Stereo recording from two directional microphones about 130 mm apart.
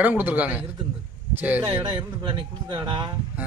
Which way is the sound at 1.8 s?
35° right (ahead or behind).